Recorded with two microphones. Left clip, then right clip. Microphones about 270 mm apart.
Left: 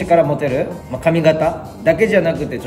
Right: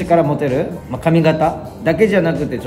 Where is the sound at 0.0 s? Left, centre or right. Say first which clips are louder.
Left 1 dB; centre.